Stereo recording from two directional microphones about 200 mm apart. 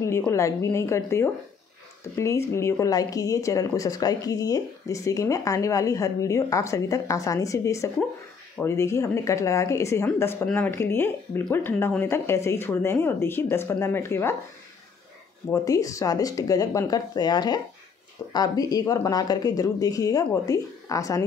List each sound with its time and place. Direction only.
0.0 s speech: 15° left (ahead or behind)
15.5 s speech: 15° left (ahead or behind)